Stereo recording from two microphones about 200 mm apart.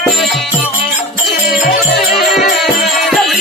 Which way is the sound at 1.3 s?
45° left (ahead or behind).